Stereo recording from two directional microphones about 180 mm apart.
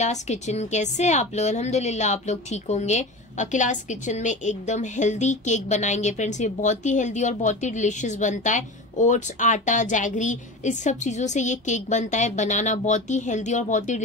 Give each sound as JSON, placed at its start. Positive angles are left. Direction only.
{"t": 0.0, "sound": "a woman's voice", "side_deg": 40}